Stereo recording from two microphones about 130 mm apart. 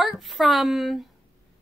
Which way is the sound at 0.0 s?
Centre (ahead or behind).